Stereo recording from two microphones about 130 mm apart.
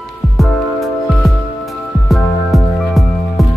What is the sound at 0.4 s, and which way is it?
Music, centre (ahead or behind).